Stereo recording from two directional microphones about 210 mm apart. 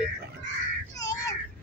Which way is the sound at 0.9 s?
15° left (ahead or behind).